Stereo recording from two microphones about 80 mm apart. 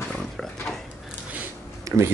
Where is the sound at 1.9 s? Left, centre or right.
Right.